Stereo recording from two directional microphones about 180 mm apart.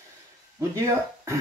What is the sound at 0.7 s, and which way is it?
Speech, 15° right (ahead or behind).